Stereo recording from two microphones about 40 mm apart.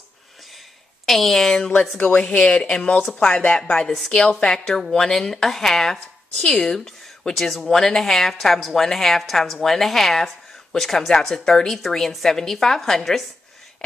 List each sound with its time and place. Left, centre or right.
1.0 s speech: centre
1.6 s speech: centre